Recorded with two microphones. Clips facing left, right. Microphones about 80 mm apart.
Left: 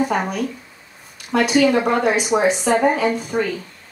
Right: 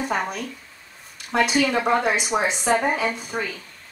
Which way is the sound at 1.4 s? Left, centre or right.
Centre.